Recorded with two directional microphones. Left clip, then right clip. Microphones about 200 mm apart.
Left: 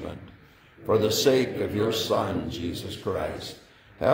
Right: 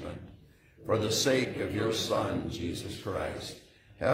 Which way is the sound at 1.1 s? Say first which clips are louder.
Left 6 dB; 45° left (ahead or behind).